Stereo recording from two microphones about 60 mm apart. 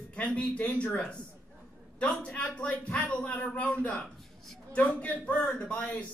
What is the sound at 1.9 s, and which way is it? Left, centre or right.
A man's voice, centre.